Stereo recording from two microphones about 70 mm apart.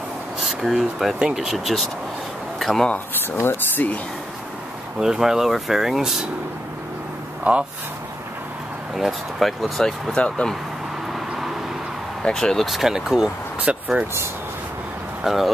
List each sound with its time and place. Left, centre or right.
0.4 s speech: centre
3.3 s speech: left
5.0 s speech: centre
7.5 s speech: centre
8.9 s speech: centre
10.1 s speech: centre
11.1 s vehicle: centre
12.2 s speech: centre
15.2 s speech: centre